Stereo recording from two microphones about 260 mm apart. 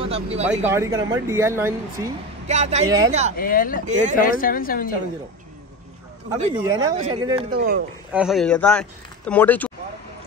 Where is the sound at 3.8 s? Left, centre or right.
Right.